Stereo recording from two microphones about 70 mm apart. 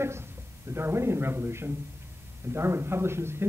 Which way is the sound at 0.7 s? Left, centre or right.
Right.